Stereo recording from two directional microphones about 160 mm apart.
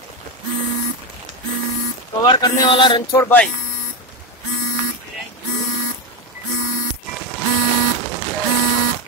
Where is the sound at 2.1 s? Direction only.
25° left (ahead or behind).